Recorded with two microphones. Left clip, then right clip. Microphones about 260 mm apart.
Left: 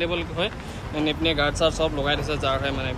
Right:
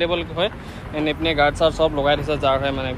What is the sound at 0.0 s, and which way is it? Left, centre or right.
Speech, centre.